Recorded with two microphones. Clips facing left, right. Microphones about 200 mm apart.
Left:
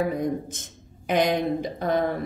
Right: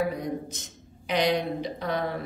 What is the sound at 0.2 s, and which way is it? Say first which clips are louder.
Speech: left 5 dB; 50° left (ahead or behind).